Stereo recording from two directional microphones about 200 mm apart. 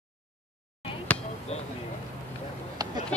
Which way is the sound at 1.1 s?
5° left (ahead or behind).